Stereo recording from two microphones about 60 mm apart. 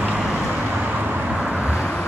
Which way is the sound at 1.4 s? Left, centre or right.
Centre.